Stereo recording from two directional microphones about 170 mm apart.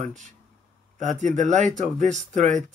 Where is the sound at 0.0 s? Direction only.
45° right (ahead or behind).